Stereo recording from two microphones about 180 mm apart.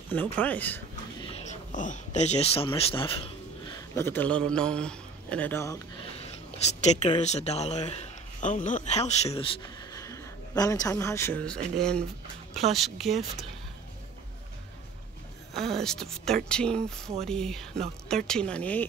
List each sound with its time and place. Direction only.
0.1 s speech: 10° left (ahead or behind)
1.5 s a man's voice: 45° left (ahead or behind); by 3.2 s 30° left (ahead or behind)
3.6 s a man's voice: 15° left (ahead or behind)
6.3 s speech: 40° left (ahead or behind)
9.9 s speech: 20° left (ahead or behind); by 13.5 s centre (ahead or behind)
15.5 s speech: centre (ahead or behind)